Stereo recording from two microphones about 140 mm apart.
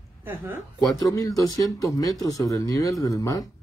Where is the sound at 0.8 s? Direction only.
25° left (ahead or behind).